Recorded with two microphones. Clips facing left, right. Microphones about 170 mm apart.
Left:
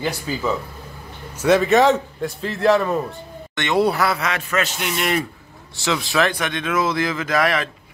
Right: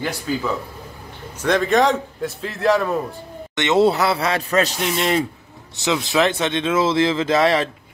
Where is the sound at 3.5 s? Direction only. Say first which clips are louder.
Right 3 dB; 20° right (ahead or behind).